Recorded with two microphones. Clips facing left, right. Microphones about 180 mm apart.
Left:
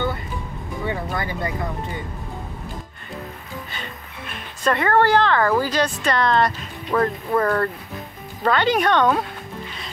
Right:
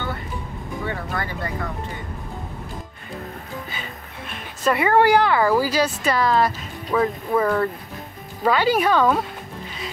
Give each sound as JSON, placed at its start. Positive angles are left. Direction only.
{"t": 0.8, "sound": "speech", "side_deg": 20}
{"t": 4.6, "sound": "speech", "side_deg": -10}